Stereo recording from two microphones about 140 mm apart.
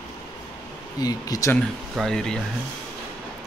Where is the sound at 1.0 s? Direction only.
25° left (ahead or behind).